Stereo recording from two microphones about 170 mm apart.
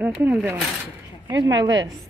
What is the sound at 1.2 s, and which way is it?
Speech, 25° right (ahead or behind).